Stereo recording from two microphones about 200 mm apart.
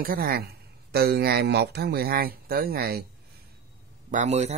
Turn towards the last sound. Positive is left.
turn(degrees=-35)  # may be behind; listen again after turning